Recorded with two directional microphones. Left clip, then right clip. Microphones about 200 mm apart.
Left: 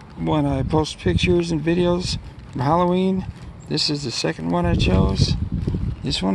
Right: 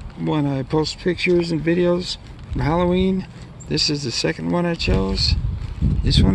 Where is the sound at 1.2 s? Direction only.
20° left (ahead or behind).